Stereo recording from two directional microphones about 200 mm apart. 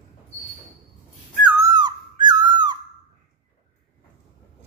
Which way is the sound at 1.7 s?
20° right (ahead or behind).